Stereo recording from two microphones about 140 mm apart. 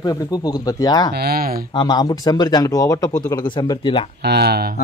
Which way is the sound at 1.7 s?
30° left (ahead or behind).